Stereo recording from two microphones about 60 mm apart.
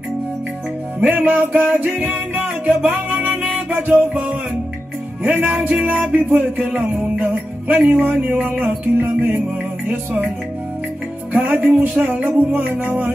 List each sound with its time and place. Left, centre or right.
1.0 s music: right
2.4 s music: centre
2.9 s music: right
11.3 s music: right